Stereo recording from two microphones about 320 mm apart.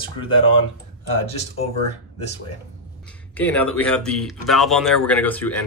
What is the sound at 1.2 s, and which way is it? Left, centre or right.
Speech, centre.